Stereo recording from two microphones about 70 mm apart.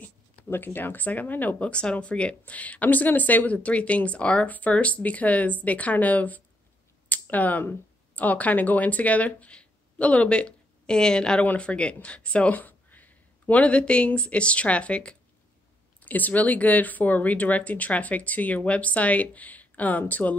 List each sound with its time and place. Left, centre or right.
0.0 s speech: left
7.1 s a sound: left
8.2 s speech: left